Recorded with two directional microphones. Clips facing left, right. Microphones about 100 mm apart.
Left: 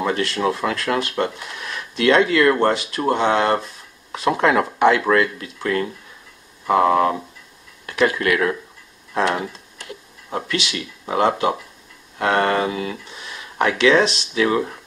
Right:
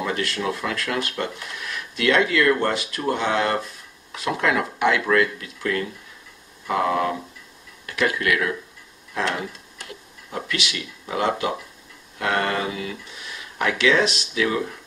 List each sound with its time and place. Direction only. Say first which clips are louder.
0.0 s speech: left 5 dB; 30° left (ahead or behind)
11.1 s speech: left 5 dB; 35° left (ahead or behind)